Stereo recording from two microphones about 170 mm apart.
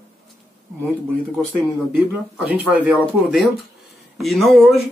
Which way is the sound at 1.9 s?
5° right (ahead or behind).